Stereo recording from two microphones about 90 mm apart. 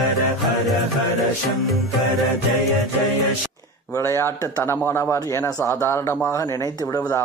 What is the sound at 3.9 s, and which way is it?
A man's voice, 35° left (ahead or behind).